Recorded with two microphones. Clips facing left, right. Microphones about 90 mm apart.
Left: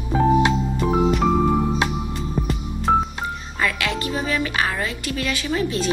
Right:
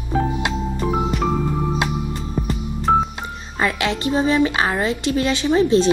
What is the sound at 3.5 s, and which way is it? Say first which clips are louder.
A woman's voice: right 4 dB; 25° right (ahead or behind).